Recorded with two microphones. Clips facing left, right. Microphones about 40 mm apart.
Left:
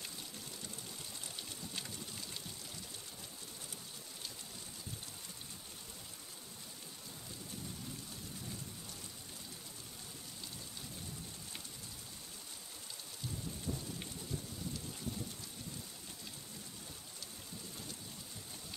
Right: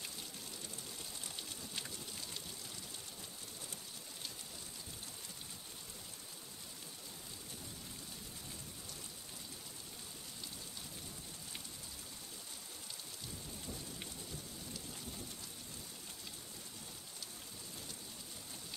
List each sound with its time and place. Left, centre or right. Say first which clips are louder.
13.7 s rain: left 7 dB; left